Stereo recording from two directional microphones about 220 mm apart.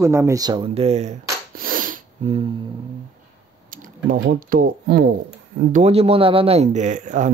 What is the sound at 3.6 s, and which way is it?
Speech, 40° right (ahead or behind).